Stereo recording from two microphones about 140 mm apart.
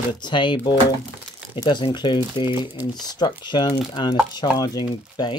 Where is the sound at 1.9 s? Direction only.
35° left (ahead or behind).